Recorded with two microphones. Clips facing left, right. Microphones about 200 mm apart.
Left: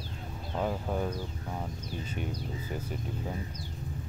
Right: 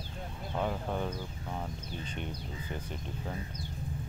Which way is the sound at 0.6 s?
5° left (ahead or behind).